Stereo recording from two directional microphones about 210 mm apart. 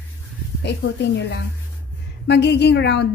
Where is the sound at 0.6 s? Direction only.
55° left (ahead or behind).